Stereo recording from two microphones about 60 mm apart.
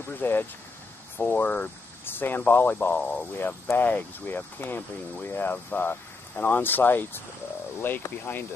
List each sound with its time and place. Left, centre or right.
0.2 s speech: left
3.0 s speech: centre
3.7 s speech: left